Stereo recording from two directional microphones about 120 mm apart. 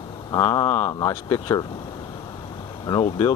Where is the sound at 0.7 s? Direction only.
55° left (ahead or behind).